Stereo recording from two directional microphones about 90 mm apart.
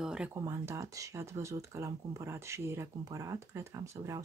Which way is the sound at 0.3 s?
35° right (ahead or behind).